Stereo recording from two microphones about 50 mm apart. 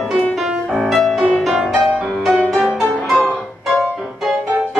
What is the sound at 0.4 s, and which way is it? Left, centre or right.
Music, centre.